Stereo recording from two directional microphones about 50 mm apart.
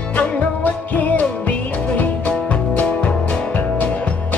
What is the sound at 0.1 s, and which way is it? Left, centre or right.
Music, left.